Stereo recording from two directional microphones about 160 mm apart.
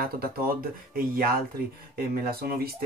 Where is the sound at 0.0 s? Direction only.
65° right (ahead or behind).